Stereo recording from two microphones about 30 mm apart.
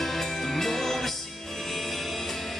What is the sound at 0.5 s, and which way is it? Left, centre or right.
Music, centre.